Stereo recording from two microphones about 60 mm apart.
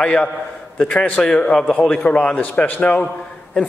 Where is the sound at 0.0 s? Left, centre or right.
Centre.